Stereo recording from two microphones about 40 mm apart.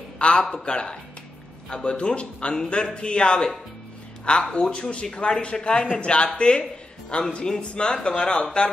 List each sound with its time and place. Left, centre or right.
0.2 s speech: left